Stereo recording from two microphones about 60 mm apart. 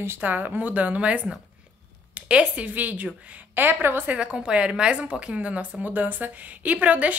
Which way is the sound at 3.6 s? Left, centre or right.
Right.